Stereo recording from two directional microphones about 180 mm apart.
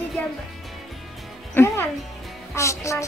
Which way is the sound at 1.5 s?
15° left (ahead or behind).